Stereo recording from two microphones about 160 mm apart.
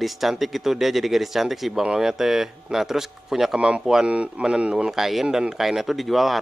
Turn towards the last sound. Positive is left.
turn(degrees=0)  # may be behind; listen again after turning